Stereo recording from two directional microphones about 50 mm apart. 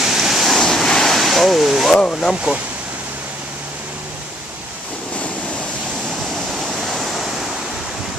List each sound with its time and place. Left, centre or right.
0.0 s waves: centre
2.5 s speech: right
6.7 s waves: centre